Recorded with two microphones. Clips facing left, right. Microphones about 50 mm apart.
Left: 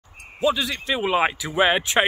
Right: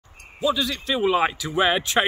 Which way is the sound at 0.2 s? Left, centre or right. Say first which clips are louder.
Left 2 dB; left.